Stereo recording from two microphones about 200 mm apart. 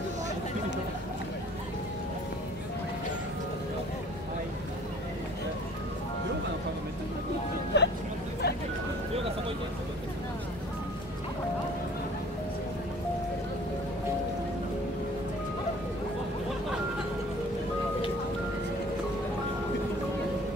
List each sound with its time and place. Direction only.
7.7 s vehicle: 60° left (ahead or behind)